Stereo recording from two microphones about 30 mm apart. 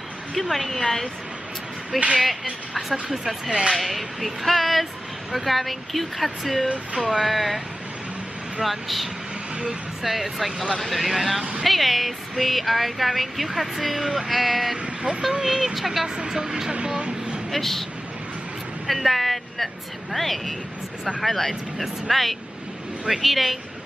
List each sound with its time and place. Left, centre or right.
0.3 s a woman's voice: centre
8.6 s speech: centre
16.3 s speech: right
17.5 s speech: centre
18.9 s a woman's voice: centre